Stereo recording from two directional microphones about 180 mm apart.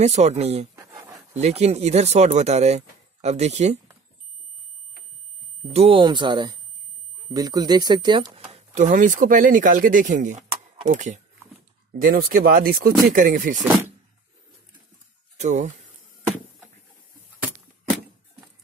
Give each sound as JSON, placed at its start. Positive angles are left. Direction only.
{"t": 0.0, "sound": "speech", "side_deg": -40}
{"t": 0.7, "sound": "a sound", "side_deg": -15}
{"t": 1.3, "sound": "speech", "side_deg": -35}
{"t": 5.6, "sound": "speech", "side_deg": -35}
{"t": 8.5, "sound": "speech", "side_deg": -40}
{"t": 15.3, "sound": "speech", "side_deg": -40}